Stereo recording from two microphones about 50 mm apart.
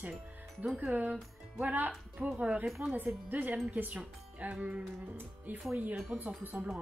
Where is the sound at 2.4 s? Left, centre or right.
Right.